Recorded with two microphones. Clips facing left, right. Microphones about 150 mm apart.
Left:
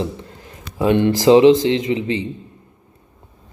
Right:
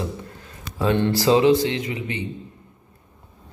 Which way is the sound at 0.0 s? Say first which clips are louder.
Left 4 dB; 20° left (ahead or behind).